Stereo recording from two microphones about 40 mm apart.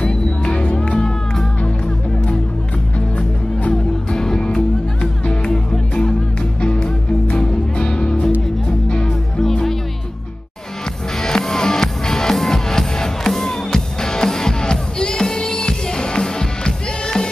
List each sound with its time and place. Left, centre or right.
0.1 s music: left
3.2 s music: left
4.1 s music: centre
9.4 s music: centre
11.1 s music: centre